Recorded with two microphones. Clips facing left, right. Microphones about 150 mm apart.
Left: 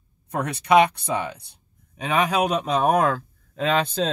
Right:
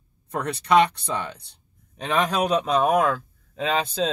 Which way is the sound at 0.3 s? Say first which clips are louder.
Left 2 dB; 10° left (ahead or behind).